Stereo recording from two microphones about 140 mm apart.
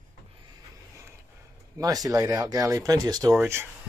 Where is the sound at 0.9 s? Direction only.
20° right (ahead or behind).